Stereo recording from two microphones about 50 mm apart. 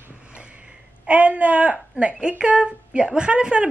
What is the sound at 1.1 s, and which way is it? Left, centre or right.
A woman's voice, right.